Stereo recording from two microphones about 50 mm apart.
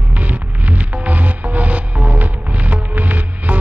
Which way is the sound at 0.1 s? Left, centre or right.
Right.